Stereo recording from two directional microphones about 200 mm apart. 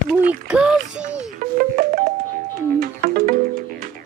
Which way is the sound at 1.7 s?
45° right (ahead or behind).